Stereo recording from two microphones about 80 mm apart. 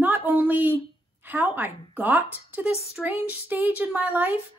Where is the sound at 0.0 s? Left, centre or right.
Right.